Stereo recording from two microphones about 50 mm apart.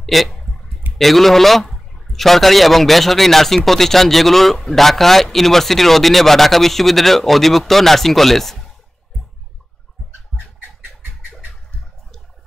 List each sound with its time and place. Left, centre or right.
0.0 s clicking: centre
0.9 s speech: centre
10.3 s bird: centre